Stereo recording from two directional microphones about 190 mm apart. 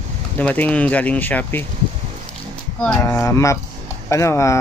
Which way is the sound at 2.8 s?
15° left (ahead or behind).